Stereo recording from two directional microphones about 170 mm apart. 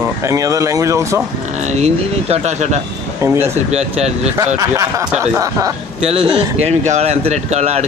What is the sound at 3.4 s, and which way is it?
Speech, 40° right (ahead or behind).